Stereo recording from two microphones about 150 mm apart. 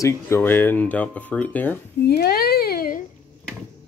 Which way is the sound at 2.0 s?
90° left.